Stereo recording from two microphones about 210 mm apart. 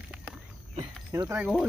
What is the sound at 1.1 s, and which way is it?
Speech, 10° right (ahead or behind).